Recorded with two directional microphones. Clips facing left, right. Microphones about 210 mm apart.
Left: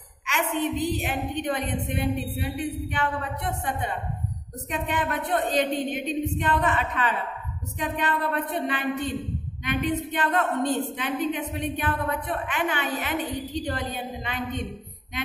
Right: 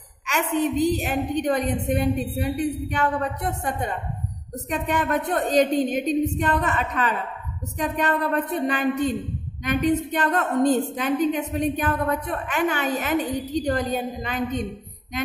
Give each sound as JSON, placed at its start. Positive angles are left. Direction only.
{"t": 0.3, "sound": "a woman's voice", "side_deg": -45}